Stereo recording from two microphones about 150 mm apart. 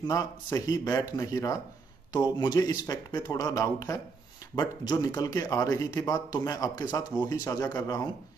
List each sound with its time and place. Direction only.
0.0 s a man's voice: 20° left (ahead or behind)